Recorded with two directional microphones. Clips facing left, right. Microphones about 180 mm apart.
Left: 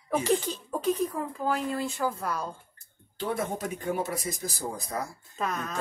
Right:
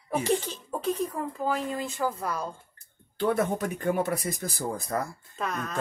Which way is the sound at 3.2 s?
60° right (ahead or behind).